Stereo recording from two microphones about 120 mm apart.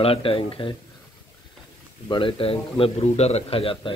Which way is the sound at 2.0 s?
45° left (ahead or behind).